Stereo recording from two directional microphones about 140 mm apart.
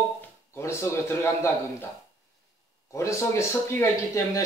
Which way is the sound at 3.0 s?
20° left (ahead or behind).